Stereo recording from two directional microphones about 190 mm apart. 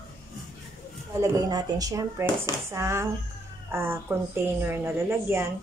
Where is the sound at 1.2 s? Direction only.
20° right (ahead or behind).